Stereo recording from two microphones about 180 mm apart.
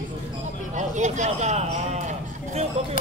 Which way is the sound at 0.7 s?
40° right (ahead or behind).